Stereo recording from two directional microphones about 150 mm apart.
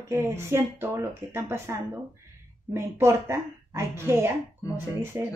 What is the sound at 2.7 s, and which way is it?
Speech, 15° right (ahead or behind).